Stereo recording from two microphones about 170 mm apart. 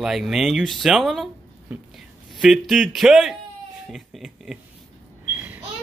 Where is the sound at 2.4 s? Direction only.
Centre (ahead or behind).